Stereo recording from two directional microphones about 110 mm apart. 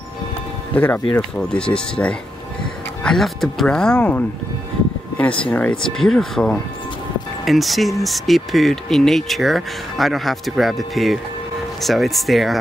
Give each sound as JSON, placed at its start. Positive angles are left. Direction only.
{"t": 0.7, "sound": "speech", "side_deg": 15}